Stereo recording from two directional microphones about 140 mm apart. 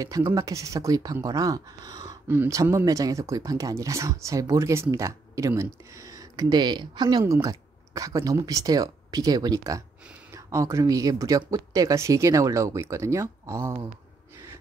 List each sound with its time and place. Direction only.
0.0 s speech: 25° right (ahead or behind)